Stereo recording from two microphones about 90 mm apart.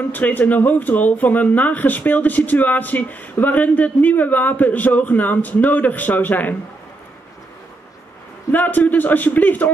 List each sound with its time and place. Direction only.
0.1 s speech: 20° left (ahead or behind)
8.5 s speech: 20° left (ahead or behind)